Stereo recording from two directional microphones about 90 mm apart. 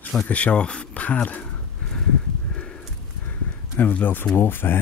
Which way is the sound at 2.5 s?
10° left (ahead or behind).